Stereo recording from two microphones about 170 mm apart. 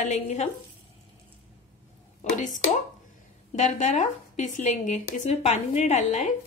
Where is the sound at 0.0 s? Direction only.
40° left (ahead or behind).